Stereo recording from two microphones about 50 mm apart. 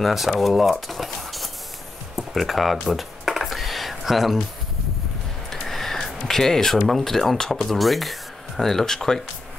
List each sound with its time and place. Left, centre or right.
0.0 s speech: centre
2.1 s computer keyboard: centre
5.5 s speech: centre